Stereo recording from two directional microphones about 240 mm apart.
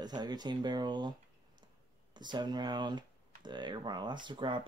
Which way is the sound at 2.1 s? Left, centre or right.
Centre.